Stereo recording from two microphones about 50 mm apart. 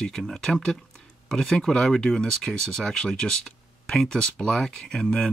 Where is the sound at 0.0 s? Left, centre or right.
Centre.